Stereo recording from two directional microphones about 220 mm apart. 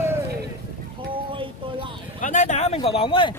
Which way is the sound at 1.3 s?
25° right (ahead or behind).